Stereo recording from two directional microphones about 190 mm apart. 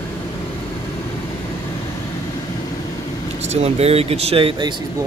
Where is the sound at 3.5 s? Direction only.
35° right (ahead or behind).